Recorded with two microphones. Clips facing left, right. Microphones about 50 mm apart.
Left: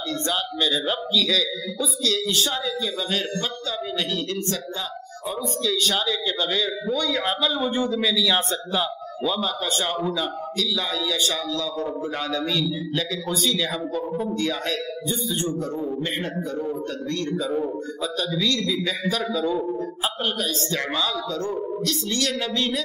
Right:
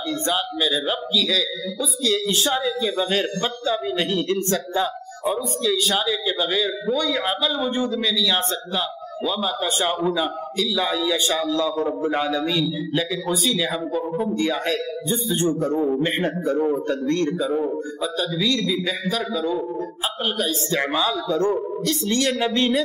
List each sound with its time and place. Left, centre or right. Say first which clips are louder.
0.1 s a man's voice: right 3 dB; centre
2.1 s speech: right 3 dB; centre
5.6 s a man's voice: even; centre
10.0 s a man's voice: right 3 dB; centre
15.0 s speech: right 5 dB; right
17.4 s a man's voice: right 3 dB; centre
20.3 s a man's voice: right 3 dB; centre